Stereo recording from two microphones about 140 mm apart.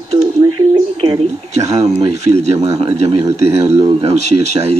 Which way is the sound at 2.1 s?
50° right (ahead or behind).